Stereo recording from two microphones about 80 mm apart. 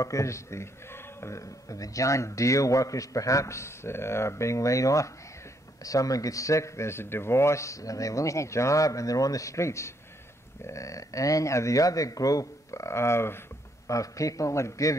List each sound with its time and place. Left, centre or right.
0.0 s a man's voice: left
13.8 s speech: left